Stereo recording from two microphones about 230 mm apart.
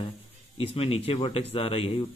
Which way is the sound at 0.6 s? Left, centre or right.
Left.